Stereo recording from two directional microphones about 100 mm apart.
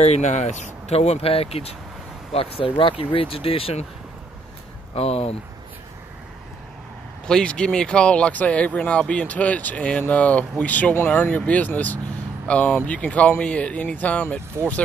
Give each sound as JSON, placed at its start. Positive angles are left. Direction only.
{"t": 0.0, "sound": "speech", "side_deg": 90}
{"t": 2.3, "sound": "speech", "side_deg": 70}
{"t": 4.9, "sound": "speech", "side_deg": 85}
{"t": 7.2, "sound": "speech", "side_deg": 10}
{"t": 14.5, "sound": "speech", "side_deg": -25}